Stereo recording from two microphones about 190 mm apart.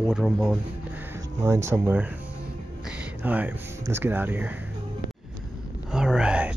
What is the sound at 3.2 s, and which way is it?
Speech, 10° right (ahead or behind).